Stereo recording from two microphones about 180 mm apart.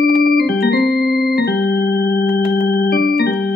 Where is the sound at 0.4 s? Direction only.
60° left (ahead or behind).